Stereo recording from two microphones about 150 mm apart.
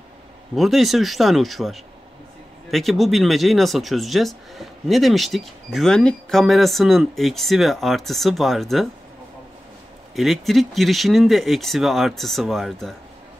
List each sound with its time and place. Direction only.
0.6 s speech: centre (ahead or behind)
10.1 s speech: centre (ahead or behind)